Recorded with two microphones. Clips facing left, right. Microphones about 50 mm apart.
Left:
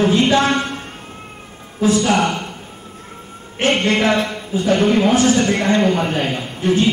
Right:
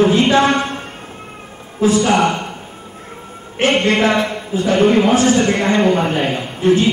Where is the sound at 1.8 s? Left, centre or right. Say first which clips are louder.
Right 2 dB; right.